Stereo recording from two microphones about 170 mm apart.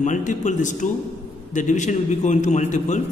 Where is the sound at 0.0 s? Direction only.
50° left (ahead or behind).